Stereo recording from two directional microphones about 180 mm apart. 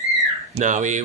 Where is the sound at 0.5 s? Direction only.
45° right (ahead or behind).